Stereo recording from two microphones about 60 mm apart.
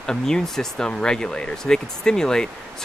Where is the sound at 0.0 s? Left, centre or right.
Centre.